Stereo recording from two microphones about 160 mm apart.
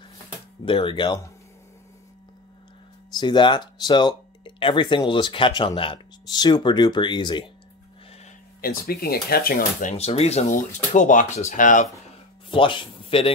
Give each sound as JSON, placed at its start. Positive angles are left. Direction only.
{"t": 0.7, "sound": "speech", "side_deg": 30}
{"t": 3.2, "sound": "speech", "side_deg": 30}
{"t": 8.5, "sound": "speech", "side_deg": 70}
{"t": 10.5, "sound": "speech", "side_deg": 55}
{"t": 12.4, "sound": "speech", "side_deg": 30}